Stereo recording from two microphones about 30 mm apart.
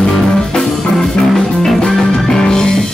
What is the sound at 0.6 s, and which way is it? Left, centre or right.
Music, centre.